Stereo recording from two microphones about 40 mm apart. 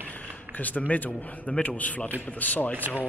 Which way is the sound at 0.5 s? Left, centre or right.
Left.